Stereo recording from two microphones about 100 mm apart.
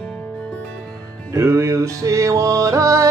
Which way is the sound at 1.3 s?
30° right (ahead or behind).